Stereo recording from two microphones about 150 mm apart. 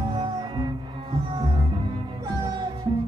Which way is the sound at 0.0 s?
30° right (ahead or behind).